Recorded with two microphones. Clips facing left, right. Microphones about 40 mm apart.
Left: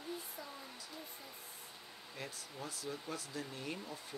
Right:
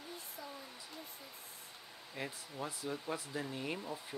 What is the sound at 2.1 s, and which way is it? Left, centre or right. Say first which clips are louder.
Speech: right 4 dB; centre.